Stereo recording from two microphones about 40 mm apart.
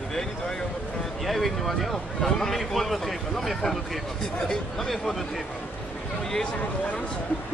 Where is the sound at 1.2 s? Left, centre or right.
Centre.